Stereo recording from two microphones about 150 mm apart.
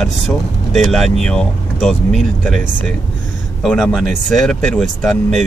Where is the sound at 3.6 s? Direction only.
Centre (ahead or behind).